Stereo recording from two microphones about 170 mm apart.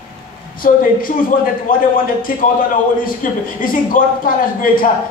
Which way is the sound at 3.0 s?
55° left (ahead or behind).